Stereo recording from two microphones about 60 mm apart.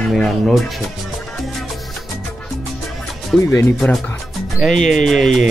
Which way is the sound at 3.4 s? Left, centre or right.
Left.